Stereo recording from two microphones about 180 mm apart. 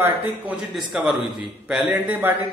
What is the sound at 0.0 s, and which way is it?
A man's voice, 10° right (ahead or behind).